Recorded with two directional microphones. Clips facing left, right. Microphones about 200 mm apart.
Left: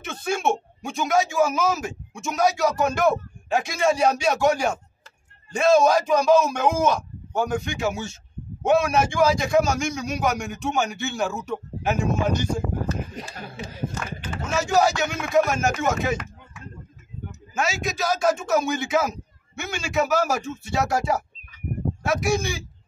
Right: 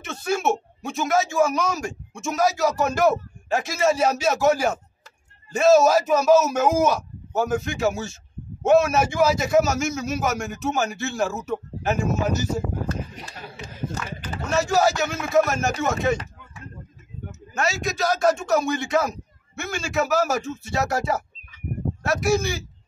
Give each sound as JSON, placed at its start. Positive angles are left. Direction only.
{"t": 0.0, "sound": "speech", "side_deg": 0}
{"t": 14.4, "sound": "speech", "side_deg": 0}
{"t": 17.6, "sound": "speech", "side_deg": 0}